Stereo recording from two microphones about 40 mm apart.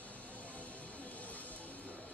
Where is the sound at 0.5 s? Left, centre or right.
Left.